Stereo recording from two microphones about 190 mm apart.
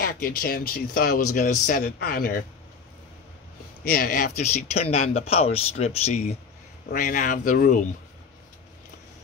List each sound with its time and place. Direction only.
0.0 s speech: 50° left (ahead or behind)
3.8 s speech: 55° left (ahead or behind)
4.4 s speech: 35° left (ahead or behind)
6.9 s speech: 45° left (ahead or behind)